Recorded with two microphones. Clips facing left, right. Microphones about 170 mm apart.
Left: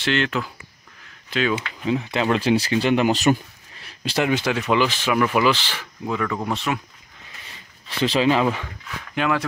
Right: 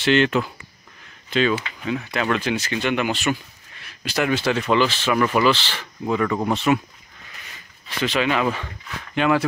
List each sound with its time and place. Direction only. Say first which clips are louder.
0.0 s speech: right 5 dB; centre (ahead or behind)
1.9 s speech: left 2 dB; 25° left (ahead or behind)
3.8 s a sound: left 1 dB; 30° left (ahead or behind)
4.3 s speech: right 3 dB; 10° left (ahead or behind)
6.0 s speech: right 3 dB; 5° right (ahead or behind)
8.0 s speech: left 3 dB; 30° left (ahead or behind)
8.6 s speech: even; centre (ahead or behind)